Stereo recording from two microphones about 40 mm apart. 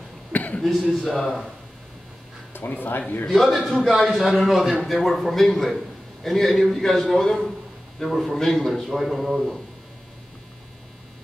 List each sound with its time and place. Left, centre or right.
0.3 s a sound: left
0.9 s a man's voice: centre
2.5 s speech: left
3.3 s a man's voice: centre